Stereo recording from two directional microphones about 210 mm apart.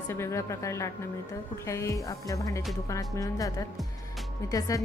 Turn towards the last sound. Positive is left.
turn(degrees=15)  # may be behind; listen again after turning